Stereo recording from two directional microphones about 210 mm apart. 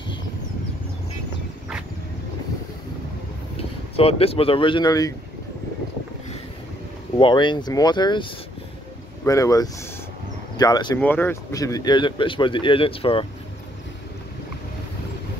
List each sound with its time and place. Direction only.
3.9 s speech: 30° left (ahead or behind)
7.2 s speech: 20° left (ahead or behind)
11.0 s speech: 10° left (ahead or behind); by 13.3 s 25° left (ahead or behind)